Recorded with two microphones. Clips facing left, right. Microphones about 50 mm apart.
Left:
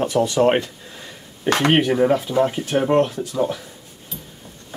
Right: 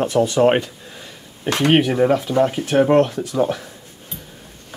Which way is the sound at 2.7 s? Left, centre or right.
Centre.